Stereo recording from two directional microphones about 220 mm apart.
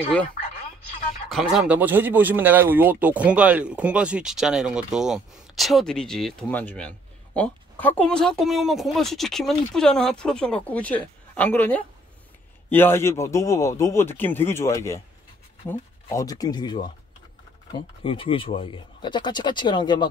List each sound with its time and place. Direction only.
1.5 s speech: 5° right (ahead or behind); by 20.1 s 20° left (ahead or behind)